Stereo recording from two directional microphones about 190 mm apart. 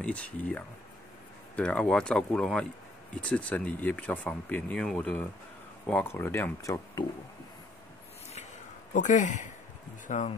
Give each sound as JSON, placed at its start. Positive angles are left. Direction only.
{"t": 0.0, "sound": "speech", "side_deg": 5}
{"t": 8.9, "sound": "speech", "side_deg": 40}